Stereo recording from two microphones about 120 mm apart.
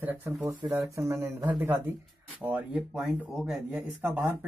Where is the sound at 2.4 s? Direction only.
10° right (ahead or behind).